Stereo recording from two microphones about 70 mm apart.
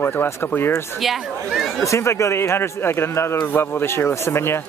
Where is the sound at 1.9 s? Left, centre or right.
Left.